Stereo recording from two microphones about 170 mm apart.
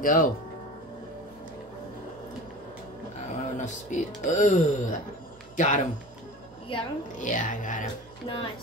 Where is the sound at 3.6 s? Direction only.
45° left (ahead or behind).